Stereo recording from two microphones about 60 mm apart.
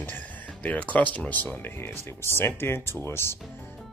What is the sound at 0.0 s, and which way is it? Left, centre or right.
Speech, left.